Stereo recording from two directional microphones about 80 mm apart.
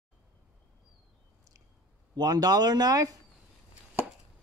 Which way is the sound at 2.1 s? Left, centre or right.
Right.